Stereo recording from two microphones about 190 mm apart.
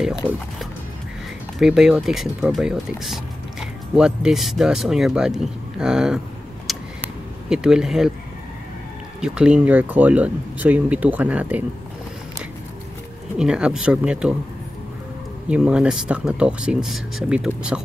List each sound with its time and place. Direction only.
1.6 s speech: 5° right (ahead or behind)
6.7 s a sound: centre (ahead or behind)
7.4 s speech: 5° right (ahead or behind)
9.2 s speech: 5° right (ahead or behind)
13.4 s speech: 5° right (ahead or behind)
15.4 s speech: 5° right (ahead or behind)